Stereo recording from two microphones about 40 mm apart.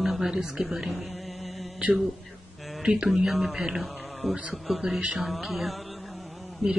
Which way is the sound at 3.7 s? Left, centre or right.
Centre.